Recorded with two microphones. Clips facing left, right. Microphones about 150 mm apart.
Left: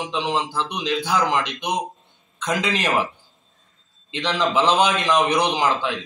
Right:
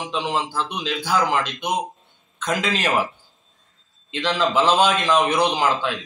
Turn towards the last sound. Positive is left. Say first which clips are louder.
# right 1 dB
turn(degrees=15)  # may be behind; listen again after turning